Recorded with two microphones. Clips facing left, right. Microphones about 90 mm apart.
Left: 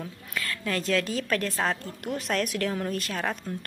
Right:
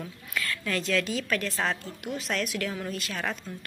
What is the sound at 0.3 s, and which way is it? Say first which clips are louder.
A woman's voice: even; 30° left (ahead or behind).